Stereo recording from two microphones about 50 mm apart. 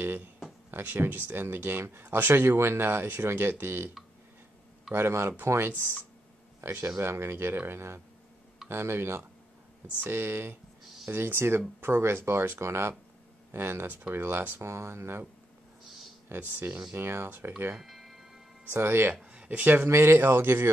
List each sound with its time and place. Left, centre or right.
0.7 s speech: right
4.9 s speech: right
7.0 s speech: right
9.9 s speech: right
16.3 s speech: right
16.9 s speech: right
17.7 s music: centre
18.7 s speech: right
19.3 s a sound: right
19.6 s speech: right
19.9 s speech: right